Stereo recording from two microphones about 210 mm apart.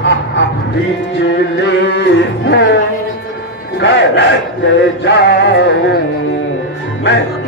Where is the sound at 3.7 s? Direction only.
55° left (ahead or behind).